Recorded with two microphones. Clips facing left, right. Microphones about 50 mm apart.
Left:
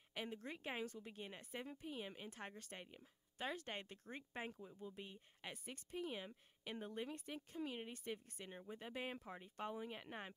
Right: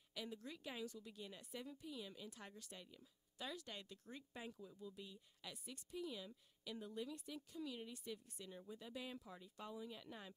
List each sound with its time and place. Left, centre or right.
0.1 s speech: left